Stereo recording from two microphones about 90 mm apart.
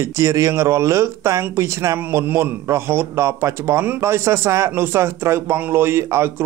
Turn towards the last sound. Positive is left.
turn(degrees=-25)  # may be behind; listen again after turning